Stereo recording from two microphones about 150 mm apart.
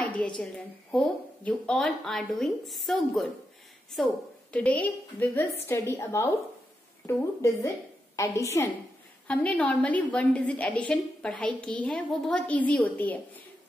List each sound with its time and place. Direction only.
0.9 s a woman's voice: 5° left (ahead or behind)